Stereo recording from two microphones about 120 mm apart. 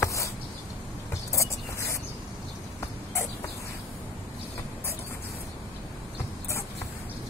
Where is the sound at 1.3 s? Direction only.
25° left (ahead or behind).